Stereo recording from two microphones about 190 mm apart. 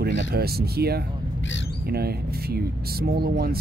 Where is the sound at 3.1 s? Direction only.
55° right (ahead or behind).